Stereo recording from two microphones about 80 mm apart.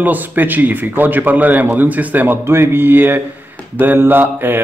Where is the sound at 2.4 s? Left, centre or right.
Right.